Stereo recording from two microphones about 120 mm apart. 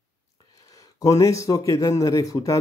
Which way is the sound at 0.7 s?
30° left (ahead or behind).